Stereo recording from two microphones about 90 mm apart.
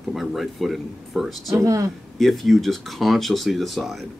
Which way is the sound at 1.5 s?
40° right (ahead or behind).